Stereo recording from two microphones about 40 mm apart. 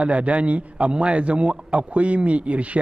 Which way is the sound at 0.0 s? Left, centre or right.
Right.